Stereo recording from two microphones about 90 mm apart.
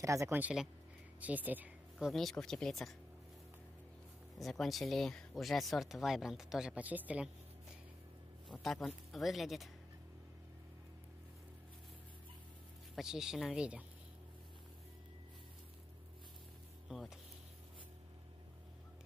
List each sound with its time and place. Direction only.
0.0 s speech: 35° right (ahead or behind)
0.3 s speech: 20° right (ahead or behind)
2.0 s speech: centre (ahead or behind)
4.4 s speech: centre (ahead or behind)
6.8 s speech: 15° right (ahead or behind)
8.5 s speech: 5° left (ahead or behind)
12.9 s speech: 5° right (ahead or behind)
16.9 s speech: 5° right (ahead or behind)